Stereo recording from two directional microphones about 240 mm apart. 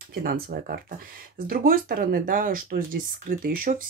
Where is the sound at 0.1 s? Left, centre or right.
Right.